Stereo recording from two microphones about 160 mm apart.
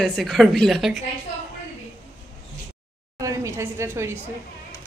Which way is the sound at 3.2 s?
20° right (ahead or behind).